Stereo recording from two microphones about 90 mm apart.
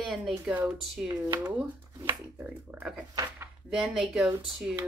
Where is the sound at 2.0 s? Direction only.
20° right (ahead or behind).